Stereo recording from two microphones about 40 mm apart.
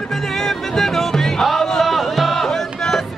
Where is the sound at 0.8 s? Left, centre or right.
Centre.